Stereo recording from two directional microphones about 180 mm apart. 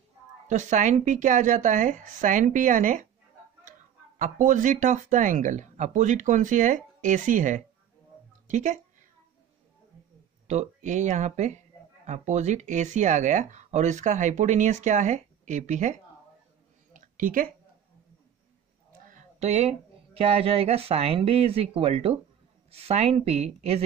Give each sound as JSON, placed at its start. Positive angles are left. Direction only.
{"t": 0.5, "sound": "speech", "side_deg": -40}
{"t": 4.2, "sound": "speech", "side_deg": -45}
{"t": 10.4, "sound": "speech", "side_deg": -40}
{"t": 16.9, "sound": "a sound", "side_deg": -45}
{"t": 19.0, "sound": "a sound", "side_deg": -40}
{"t": 20.2, "sound": "speech", "side_deg": -35}